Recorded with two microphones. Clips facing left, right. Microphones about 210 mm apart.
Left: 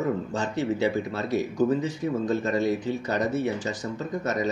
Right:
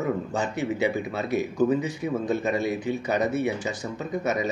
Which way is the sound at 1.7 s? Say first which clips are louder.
Even; 10° right (ahead or behind).